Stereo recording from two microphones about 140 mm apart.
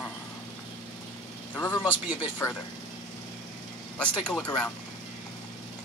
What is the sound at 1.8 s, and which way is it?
Speech, 10° right (ahead or behind).